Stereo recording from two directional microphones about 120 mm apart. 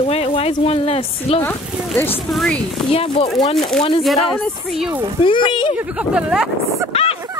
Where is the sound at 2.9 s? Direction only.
55° left (ahead or behind).